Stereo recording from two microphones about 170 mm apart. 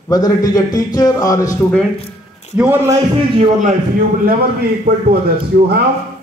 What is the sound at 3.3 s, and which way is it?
Speech, 45° right (ahead or behind).